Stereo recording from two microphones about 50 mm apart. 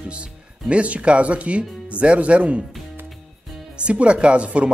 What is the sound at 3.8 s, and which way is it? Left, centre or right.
Speech, right.